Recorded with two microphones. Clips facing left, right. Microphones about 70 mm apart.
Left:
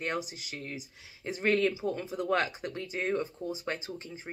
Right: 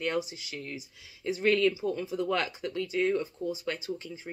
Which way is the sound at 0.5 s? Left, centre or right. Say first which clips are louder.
Right 1 dB; left.